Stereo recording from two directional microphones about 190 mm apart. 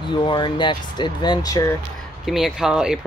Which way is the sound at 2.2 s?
Centre (ahead or behind).